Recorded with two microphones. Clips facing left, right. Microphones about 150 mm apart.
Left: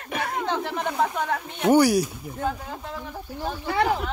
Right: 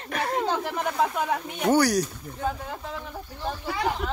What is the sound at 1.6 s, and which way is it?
Speech, 10° left (ahead or behind).